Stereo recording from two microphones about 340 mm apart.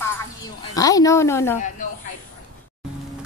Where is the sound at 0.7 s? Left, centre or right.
Centre.